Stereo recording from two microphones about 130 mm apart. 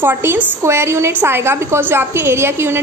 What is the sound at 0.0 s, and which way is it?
A woman's voice, 15° right (ahead or behind).